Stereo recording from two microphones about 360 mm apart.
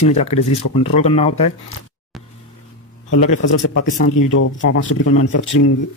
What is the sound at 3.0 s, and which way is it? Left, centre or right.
Speech, left.